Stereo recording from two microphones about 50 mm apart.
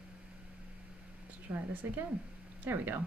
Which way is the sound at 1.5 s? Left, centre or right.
Right.